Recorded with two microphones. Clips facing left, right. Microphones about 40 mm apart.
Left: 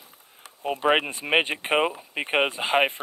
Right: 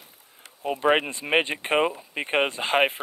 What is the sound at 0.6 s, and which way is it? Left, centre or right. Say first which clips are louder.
Speech: even; centre.